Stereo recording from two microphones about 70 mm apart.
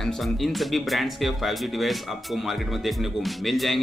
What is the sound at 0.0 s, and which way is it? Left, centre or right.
Speech, centre.